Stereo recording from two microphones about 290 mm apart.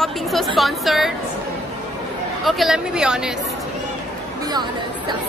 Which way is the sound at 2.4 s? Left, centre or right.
Centre.